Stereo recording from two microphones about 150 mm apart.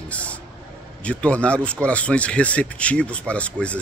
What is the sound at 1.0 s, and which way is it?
Speech, 10° left (ahead or behind).